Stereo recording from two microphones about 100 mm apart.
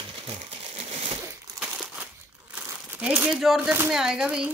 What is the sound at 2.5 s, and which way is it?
Crumpling, 15° right (ahead or behind).